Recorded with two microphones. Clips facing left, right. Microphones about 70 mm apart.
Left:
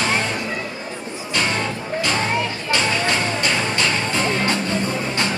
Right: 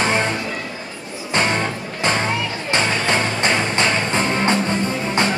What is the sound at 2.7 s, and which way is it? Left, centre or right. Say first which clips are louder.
Music: right 2 dB; right.